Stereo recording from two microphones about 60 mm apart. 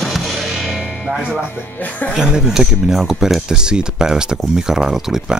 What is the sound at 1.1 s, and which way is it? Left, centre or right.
Speech, centre.